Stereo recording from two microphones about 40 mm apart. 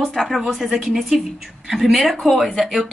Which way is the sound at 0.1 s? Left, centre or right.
Centre.